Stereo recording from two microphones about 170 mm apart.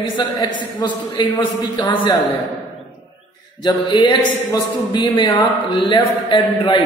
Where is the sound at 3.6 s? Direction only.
25° left (ahead or behind).